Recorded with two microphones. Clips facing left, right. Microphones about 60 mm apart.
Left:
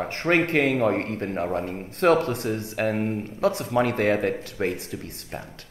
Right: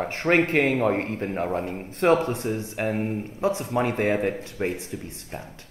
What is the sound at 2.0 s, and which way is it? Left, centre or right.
A man's voice, left.